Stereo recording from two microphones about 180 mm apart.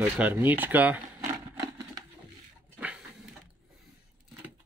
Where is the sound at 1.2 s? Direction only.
15° right (ahead or behind).